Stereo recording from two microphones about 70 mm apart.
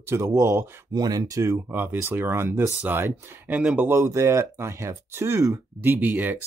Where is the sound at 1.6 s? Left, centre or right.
Right.